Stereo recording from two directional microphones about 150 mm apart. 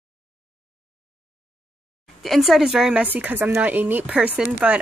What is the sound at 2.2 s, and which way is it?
Speech, centre (ahead or behind).